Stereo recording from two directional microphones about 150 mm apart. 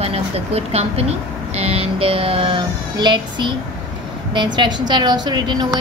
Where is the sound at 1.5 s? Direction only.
40° right (ahead or behind).